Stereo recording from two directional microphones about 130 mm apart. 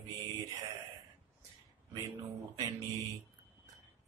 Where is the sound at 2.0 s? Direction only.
30° right (ahead or behind).